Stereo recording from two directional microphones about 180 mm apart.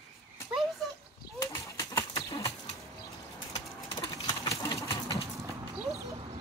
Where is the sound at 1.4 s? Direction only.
15° left (ahead or behind).